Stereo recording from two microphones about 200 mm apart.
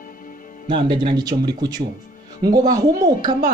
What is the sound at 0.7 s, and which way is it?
Speech, 25° right (ahead or behind).